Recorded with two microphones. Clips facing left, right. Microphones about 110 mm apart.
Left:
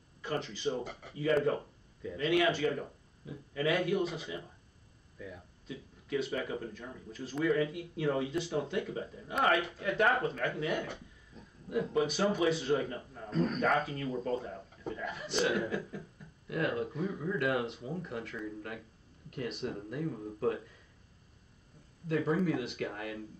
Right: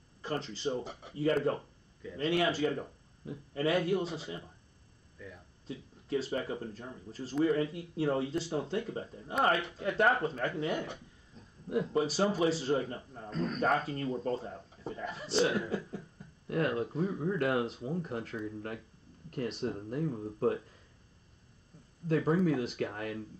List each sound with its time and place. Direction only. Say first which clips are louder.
0.2 s speech: even; 35° right (ahead or behind)
5.2 s speech: left 3 dB; centre (ahead or behind)
5.7 s speech: right 1 dB; 35° right (ahead or behind)
13.3 s speech: left 3 dB; 5° left (ahead or behind)
13.8 s speech: right 1 dB; 35° right (ahead or behind)
22.0 s speech: right 2 dB; 40° right (ahead or behind)